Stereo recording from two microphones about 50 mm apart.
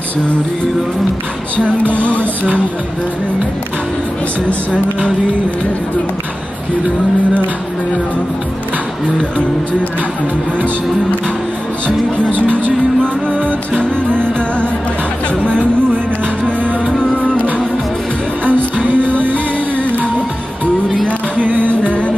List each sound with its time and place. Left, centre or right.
16.9 s music: left
18.4 s music: right
21.4 s music: right
21.6 s music: left